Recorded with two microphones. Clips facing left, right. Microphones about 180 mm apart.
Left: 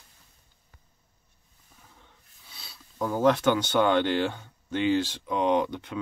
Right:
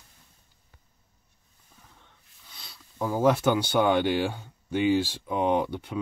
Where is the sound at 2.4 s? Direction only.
5° left (ahead or behind).